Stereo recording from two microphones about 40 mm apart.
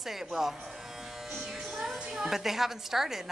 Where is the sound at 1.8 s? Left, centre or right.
Centre.